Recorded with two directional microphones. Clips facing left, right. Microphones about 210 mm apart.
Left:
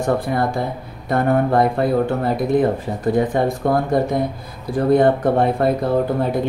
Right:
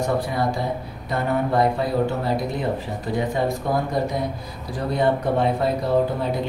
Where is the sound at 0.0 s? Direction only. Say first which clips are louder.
Left 3 dB; 55° left (ahead or behind).